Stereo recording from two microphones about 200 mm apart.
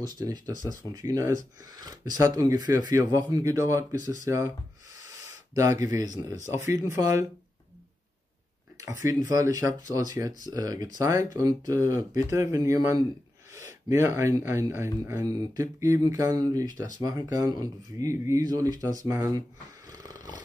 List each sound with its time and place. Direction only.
0.0 s speech: 20° right (ahead or behind)
5.5 s speech: 15° right (ahead or behind)
9.0 s speech: 15° right (ahead or behind)
19.9 s dog: 15° right (ahead or behind)